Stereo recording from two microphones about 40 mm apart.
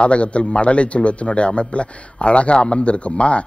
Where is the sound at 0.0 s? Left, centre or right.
Left.